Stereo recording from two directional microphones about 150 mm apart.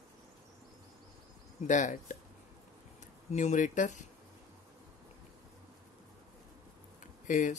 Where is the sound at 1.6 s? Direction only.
55° left (ahead or behind).